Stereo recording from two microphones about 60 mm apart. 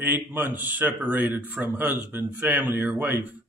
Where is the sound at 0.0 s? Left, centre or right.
Right.